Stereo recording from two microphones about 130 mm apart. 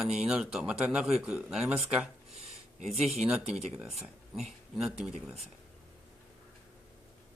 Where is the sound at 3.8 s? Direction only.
5° right (ahead or behind).